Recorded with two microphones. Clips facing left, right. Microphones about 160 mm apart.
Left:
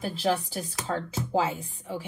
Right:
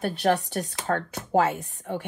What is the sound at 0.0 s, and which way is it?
A woman's voice, 65° right (ahead or behind).